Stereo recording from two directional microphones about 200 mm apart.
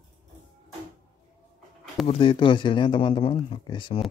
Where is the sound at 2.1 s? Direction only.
25° left (ahead or behind).